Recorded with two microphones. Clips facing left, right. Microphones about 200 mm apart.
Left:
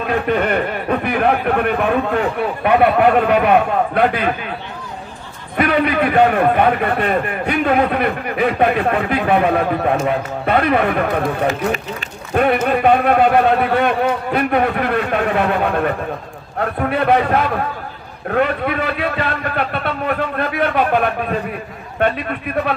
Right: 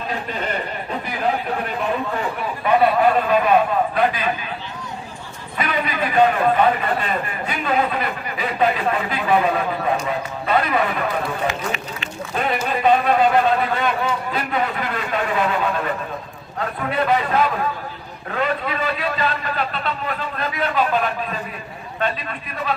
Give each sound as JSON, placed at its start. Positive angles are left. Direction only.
{"t": 0.0, "sound": "a man's voice", "side_deg": 60}
{"t": 5.6, "sound": "a man's voice", "side_deg": 65}